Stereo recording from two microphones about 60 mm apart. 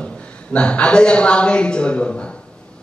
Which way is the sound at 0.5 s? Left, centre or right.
Centre.